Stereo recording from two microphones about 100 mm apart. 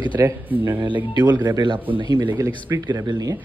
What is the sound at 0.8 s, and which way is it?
A man's voice, 50° right (ahead or behind).